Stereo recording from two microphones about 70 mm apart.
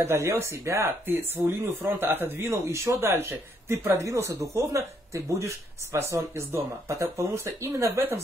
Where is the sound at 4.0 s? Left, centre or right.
Right.